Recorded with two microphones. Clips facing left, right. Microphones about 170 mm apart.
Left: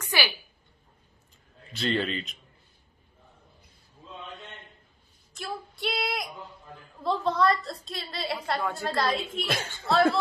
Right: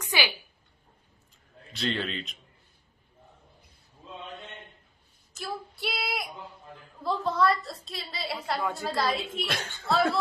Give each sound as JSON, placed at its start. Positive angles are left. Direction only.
{"t": 0.0, "sound": "a sound", "side_deg": -15}
{"t": 1.8, "sound": "a woman's voice", "side_deg": 0}
{"t": 5.3, "sound": "child singing", "side_deg": 0}
{"t": 7.0, "sound": "a woman's voice", "side_deg": 0}